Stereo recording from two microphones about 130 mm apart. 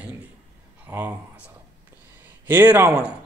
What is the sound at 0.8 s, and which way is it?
Speech, 15° right (ahead or behind).